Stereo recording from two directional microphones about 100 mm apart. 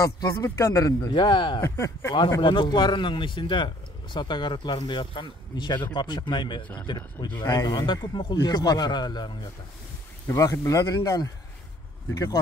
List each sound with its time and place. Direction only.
0.3 s speech: 30° left (ahead or behind)
1.1 s speech: 50° left (ahead or behind)
1.6 s speech: 25° left (ahead or behind)
2.4 s speech: 50° left (ahead or behind)
10.2 s speech: 30° left (ahead or behind)